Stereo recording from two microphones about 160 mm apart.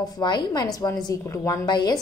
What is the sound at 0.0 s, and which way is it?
A woman's voice, 25° left (ahead or behind).